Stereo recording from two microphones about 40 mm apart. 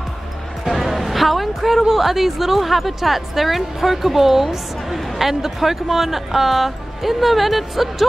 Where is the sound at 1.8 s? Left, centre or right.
Centre.